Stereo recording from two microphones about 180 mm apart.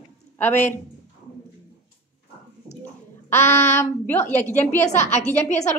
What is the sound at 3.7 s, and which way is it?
Speech, 15° left (ahead or behind).